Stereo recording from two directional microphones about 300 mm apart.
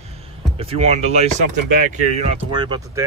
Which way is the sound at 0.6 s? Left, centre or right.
Centre.